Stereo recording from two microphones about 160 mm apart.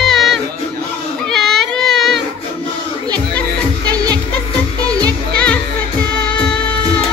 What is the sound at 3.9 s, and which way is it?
Music, 25° right (ahead or behind).